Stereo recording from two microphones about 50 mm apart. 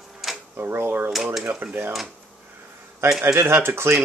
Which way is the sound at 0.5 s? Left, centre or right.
Right.